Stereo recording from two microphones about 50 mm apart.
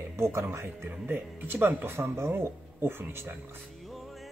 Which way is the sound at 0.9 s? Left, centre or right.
Right.